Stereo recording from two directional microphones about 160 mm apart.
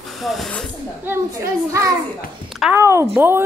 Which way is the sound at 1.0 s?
15° right (ahead or behind).